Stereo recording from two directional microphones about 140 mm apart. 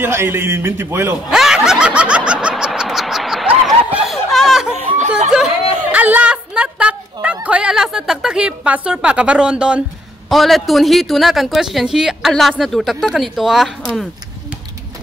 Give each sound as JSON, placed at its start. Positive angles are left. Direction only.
{"t": 0.0, "sound": "a woman's voice", "side_deg": -15}
{"t": 1.3, "sound": "snicker", "side_deg": -5}
{"t": 3.9, "sound": "a sound", "side_deg": 0}
{"t": 7.4, "sound": "a woman's voice", "side_deg": -5}